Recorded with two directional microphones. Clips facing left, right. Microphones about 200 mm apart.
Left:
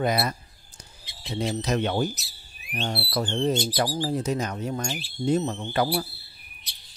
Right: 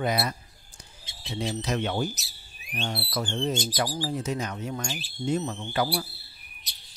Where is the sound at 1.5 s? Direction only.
40° left (ahead or behind).